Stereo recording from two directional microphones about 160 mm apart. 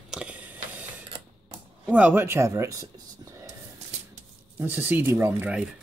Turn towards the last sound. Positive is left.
turn(degrees=-15)  # may be behind; listen again after turning